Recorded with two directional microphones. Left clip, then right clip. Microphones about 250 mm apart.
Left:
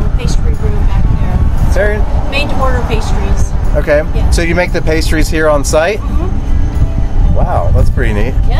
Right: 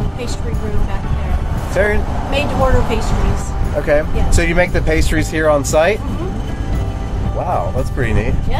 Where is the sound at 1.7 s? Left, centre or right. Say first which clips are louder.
Left 2 dB; centre.